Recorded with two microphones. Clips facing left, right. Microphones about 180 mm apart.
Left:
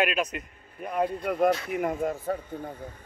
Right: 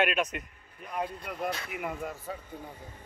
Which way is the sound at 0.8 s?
55° left (ahead or behind).